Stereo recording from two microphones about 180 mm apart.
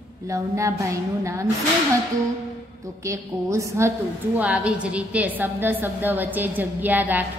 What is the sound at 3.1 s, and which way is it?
A woman's voice, 15° right (ahead or behind).